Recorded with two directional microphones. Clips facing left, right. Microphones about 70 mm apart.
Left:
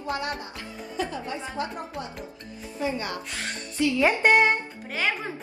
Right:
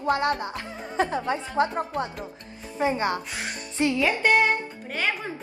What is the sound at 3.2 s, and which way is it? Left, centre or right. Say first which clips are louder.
Speech: right 1 dB; centre.